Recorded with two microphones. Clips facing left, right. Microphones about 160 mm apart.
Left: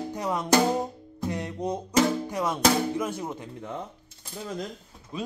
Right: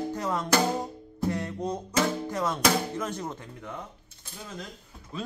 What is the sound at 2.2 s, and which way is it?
Mantra, 15° left (ahead or behind).